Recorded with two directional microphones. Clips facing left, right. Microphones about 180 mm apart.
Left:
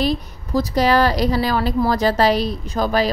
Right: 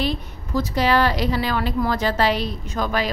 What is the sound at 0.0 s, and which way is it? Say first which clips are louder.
A woman's voice: left 4 dB; 40° left (ahead or behind).